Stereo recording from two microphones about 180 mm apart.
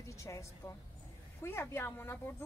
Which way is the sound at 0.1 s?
15° left (ahead or behind).